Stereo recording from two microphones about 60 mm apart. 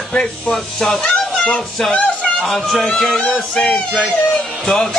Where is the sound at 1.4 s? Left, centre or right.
Centre.